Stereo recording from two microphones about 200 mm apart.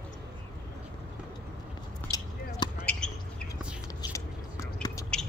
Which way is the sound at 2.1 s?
20° left (ahead or behind).